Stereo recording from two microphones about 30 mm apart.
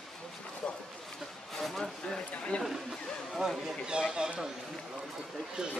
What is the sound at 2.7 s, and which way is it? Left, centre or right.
Speech, centre.